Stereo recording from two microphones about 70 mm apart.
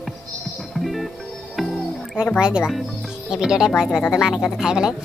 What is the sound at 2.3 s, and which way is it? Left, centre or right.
Speech, centre.